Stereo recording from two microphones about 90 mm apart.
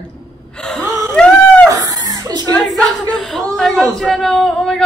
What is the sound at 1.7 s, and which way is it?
Chuckle, 45° right (ahead or behind).